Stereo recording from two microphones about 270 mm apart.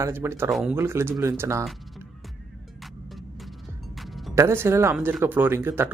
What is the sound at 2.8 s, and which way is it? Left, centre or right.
Music, centre.